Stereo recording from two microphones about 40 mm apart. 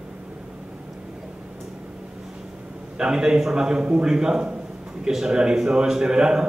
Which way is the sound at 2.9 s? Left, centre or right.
Right.